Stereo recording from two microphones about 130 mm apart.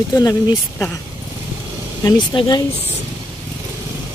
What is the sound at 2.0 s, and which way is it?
Speech, 30° left (ahead or behind).